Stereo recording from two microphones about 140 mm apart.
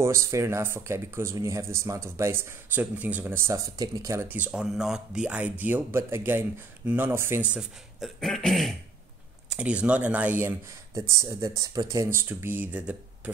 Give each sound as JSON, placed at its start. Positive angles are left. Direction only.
{"t": 0.0, "sound": "speech", "side_deg": -20}
{"t": 8.2, "sound": "throat clearing", "side_deg": 5}
{"t": 9.5, "sound": "speech", "side_deg": -10}